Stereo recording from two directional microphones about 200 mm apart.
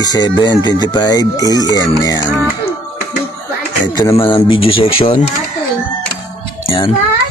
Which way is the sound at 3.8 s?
20° left (ahead or behind).